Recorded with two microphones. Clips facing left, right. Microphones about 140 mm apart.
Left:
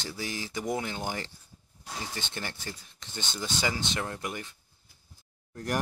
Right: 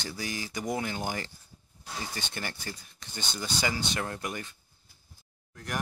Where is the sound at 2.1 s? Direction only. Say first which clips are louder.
Even; 25° left (ahead or behind).